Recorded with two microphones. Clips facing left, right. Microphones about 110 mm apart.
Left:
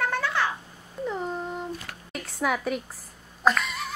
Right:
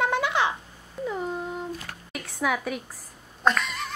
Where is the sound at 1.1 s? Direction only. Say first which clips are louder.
Even; 5° right (ahead or behind).